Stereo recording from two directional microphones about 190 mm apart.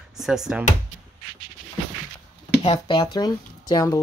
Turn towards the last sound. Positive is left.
turn(degrees=20)  # may be behind; listen again after turning